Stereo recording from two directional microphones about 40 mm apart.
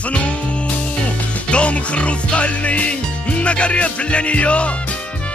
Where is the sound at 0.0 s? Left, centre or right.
Left.